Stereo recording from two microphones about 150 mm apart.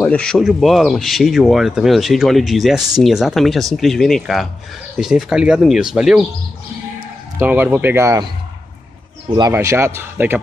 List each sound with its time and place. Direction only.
0.0 s speech: 5° left (ahead or behind)
7.3 s speech: 10° right (ahead or behind)
9.5 s speech: 20° right (ahead or behind)